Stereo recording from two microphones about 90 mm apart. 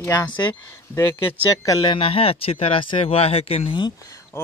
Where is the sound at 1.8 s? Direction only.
75° left (ahead or behind).